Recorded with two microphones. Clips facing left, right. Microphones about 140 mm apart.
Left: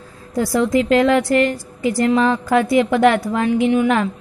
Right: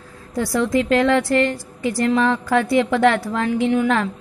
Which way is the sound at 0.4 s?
20° left (ahead or behind).